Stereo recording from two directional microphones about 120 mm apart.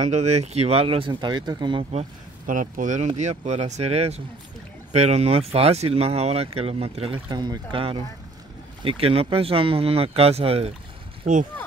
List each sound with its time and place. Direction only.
0.0 s speech: 70° right (ahead or behind); by 1.9 s 40° right (ahead or behind)
2.6 s speech: 90° right
3.2 s speech: 75° right (ahead or behind); by 7.2 s 50° right (ahead or behind)
7.2 s speech: 35° right (ahead or behind)
8.8 s speech: 55° right (ahead or behind)